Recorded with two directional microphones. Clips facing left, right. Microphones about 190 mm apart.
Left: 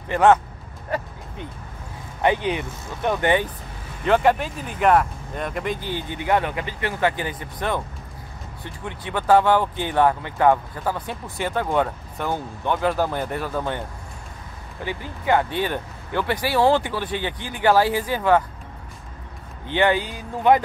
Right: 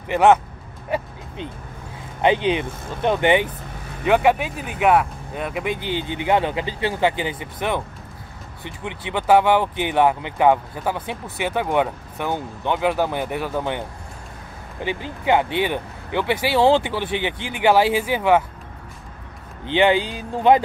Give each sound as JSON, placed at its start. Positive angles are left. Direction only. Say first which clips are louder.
{"t": 0.1, "sound": "speech", "louder": "right 1 dB", "side_deg": -20}
{"t": 2.2, "sound": "speech", "louder": "right 3 dB", "side_deg": -20}
{"t": 4.0, "sound": "speech", "louder": "right 1 dB", "side_deg": -10}
{"t": 5.9, "sound": "speech", "louder": "right 3 dB", "side_deg": -20}
{"t": 8.8, "sound": "speech", "louder": "right 1 dB", "side_deg": -15}
{"t": 14.9, "sound": "speech", "louder": "right 2 dB", "side_deg": -20}
{"t": 19.6, "sound": "speech", "louder": "right 3 dB", "side_deg": -20}